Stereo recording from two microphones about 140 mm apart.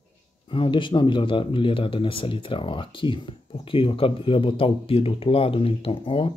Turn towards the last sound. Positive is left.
turn(degrees=40)  # may be behind; listen again after turning